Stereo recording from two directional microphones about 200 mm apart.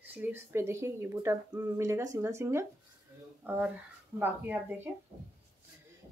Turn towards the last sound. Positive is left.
turn(degrees=-10)  # may be behind; listen again after turning